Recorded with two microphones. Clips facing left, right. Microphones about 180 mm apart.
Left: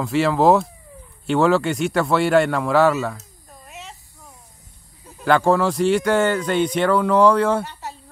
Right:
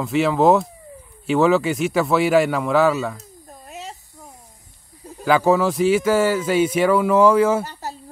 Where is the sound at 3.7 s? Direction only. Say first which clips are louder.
Right 4 dB; 40° right (ahead or behind).